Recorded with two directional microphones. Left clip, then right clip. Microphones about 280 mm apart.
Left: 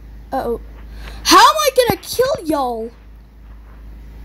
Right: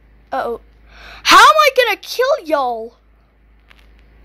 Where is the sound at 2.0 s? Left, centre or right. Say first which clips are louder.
Right 1 dB; centre.